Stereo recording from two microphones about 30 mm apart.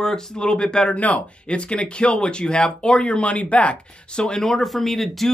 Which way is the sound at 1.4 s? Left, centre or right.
Left.